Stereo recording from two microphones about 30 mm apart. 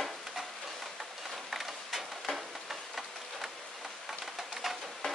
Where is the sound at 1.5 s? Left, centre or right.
Centre.